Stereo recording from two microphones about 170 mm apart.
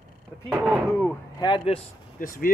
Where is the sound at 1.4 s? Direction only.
30° left (ahead or behind).